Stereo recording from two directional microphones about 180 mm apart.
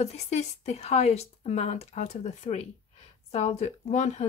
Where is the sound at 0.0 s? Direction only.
40° left (ahead or behind).